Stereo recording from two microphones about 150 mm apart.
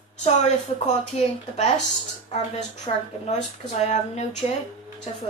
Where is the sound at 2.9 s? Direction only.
45° left (ahead or behind).